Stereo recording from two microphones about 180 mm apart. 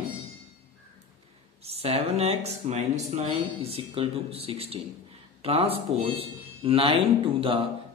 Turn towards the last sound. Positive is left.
turn(degrees=-30)  # may be behind; listen again after turning